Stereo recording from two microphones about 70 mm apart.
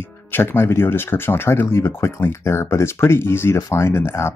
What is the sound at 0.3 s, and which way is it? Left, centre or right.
Speech, left.